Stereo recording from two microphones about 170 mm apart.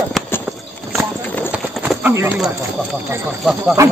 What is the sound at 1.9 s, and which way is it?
Clip-clop, 10° right (ahead or behind).